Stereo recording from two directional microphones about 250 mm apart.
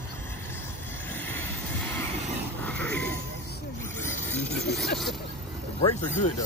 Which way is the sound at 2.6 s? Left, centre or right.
Centre.